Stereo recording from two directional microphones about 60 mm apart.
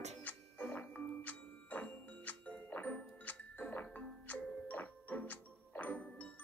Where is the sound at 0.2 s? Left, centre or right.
Left.